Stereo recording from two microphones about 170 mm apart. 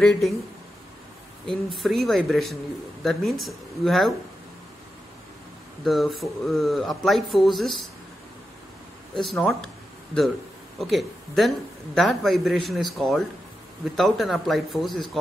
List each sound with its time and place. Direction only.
0.0 s a man's voice: 5° left (ahead or behind)
1.5 s a man's voice: centre (ahead or behind)
5.9 s a man's voice: centre (ahead or behind)
9.1 s a man's voice: centre (ahead or behind)
10.8 s a man's voice: centre (ahead or behind)